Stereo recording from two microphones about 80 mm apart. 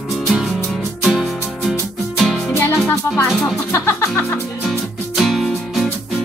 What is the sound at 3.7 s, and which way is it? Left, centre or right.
Music, left.